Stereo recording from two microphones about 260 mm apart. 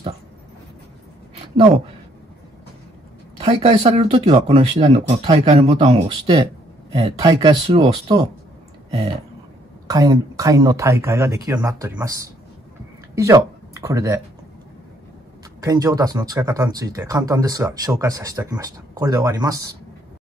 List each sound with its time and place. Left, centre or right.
3.3 s speech: right
9.8 s speech: centre
15.6 s speech: centre